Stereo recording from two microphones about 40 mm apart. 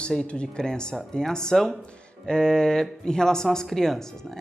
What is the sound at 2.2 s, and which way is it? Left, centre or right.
Speech, centre.